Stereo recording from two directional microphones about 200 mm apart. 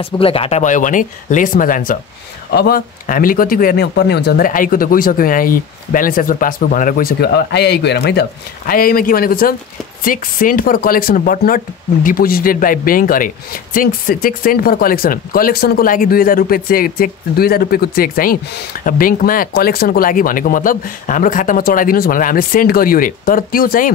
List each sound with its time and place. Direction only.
0.0 s speech: 30° left (ahead or behind); by 23.9 s 45° left (ahead or behind)